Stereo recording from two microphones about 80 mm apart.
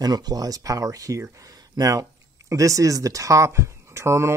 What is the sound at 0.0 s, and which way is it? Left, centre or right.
Speech, right.